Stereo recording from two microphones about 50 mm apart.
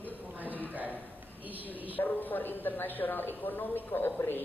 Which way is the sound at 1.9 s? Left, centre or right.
Left.